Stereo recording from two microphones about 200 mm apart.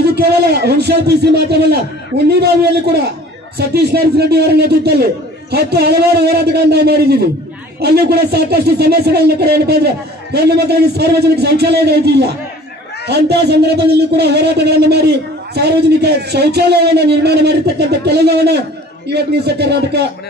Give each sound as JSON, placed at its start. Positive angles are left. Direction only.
{"t": 0.0, "sound": "a man's voice", "side_deg": -55}